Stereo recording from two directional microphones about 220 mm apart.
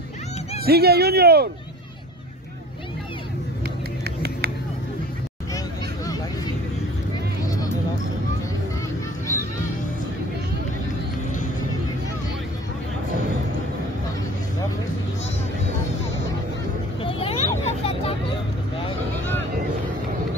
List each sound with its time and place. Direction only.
0.7 s speech: 45° right (ahead or behind)
3.6 s vehicle: 45° right (ahead or behind)
17.0 s vehicle: 25° left (ahead or behind)